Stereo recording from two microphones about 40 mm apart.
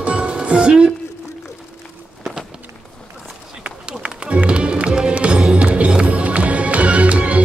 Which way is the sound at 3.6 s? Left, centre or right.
Right.